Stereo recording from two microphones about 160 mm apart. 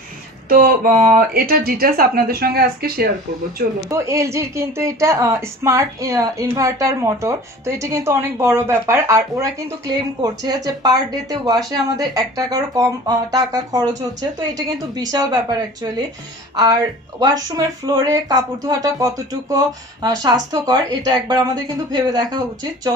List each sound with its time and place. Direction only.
0.5 s speech: 65° right (ahead or behind)
3.9 s speech: 20° right (ahead or behind)